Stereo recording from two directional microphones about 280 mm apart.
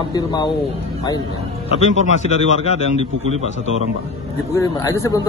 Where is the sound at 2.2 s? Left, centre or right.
Left.